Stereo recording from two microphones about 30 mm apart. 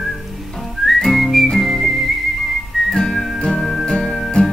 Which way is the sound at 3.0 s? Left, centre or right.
Left.